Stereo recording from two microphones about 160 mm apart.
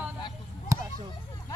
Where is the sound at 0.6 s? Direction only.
20° right (ahead or behind).